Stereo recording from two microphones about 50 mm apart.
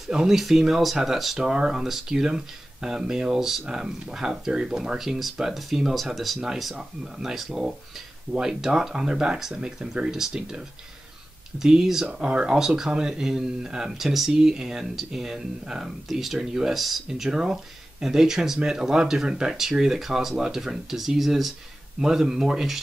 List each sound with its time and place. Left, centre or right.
0.0 s speech: centre
1.5 s speech: centre
12.1 s speech: right
12.5 s speech: centre